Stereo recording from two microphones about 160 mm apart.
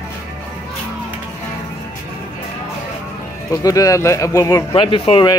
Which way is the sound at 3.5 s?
20° left (ahead or behind).